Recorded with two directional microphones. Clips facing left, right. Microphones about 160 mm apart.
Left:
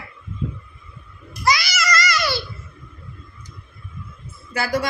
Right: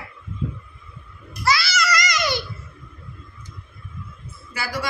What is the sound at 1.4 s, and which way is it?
Babbling, 15° left (ahead or behind).